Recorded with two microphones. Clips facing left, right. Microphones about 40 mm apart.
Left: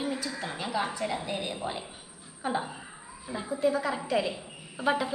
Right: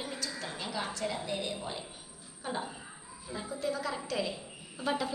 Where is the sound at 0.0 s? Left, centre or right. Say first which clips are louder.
Left 6 dB; centre.